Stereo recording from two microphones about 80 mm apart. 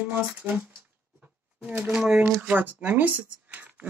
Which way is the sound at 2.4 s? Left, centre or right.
Right.